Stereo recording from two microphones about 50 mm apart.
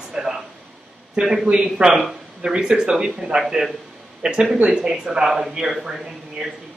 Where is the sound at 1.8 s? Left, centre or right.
Right.